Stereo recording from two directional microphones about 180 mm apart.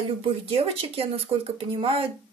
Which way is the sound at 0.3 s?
35° right (ahead or behind).